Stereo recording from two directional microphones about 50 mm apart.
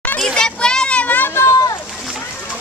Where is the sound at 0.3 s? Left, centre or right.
Centre.